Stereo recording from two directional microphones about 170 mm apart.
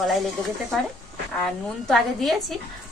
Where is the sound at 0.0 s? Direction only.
Centre (ahead or behind).